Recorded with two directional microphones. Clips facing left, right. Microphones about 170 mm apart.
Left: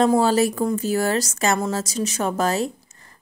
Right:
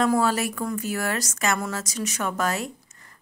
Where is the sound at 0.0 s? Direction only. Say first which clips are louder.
Left 5 dB; 30° left (ahead or behind).